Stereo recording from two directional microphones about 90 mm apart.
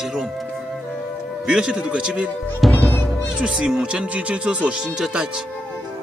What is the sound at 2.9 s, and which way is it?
Music, 25° left (ahead or behind).